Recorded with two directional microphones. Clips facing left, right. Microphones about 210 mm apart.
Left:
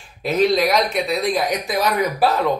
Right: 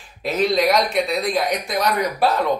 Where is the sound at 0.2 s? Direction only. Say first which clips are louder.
Left 2 dB; centre (ahead or behind).